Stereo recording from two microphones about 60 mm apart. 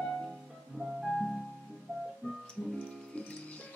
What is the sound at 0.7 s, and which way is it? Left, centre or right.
Music, centre.